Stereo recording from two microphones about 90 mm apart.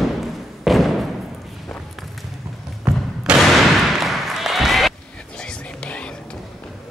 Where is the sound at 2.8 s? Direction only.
10° right (ahead or behind).